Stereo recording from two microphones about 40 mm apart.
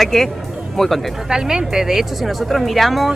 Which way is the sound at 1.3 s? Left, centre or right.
Centre.